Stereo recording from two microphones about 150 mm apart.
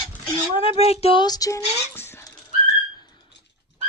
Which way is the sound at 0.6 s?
40° left (ahead or behind).